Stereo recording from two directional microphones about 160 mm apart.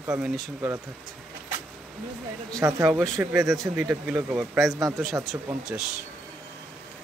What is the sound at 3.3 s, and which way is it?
Speech, centre (ahead or behind).